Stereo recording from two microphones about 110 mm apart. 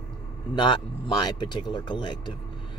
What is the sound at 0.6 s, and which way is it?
Speech, 45° left (ahead or behind).